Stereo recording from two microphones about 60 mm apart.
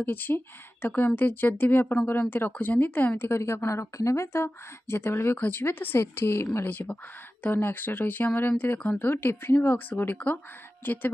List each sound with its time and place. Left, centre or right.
0.0 s speech: left
3.2 s a woman's voice: left
6.6 s speech: left